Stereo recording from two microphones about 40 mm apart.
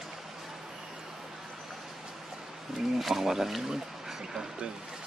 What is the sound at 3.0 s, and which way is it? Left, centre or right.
Speech, centre.